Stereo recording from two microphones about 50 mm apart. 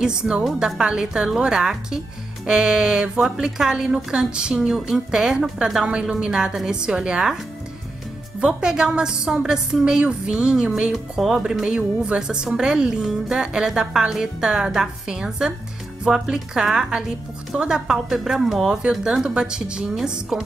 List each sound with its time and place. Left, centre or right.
0.0 s a woman's voice: centre
5.9 s a woman's voice: right
8.5 s a woman's voice: centre
17.9 s a woman's voice: centre